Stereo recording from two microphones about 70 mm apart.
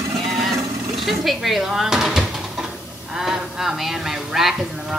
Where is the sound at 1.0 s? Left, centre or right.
Centre.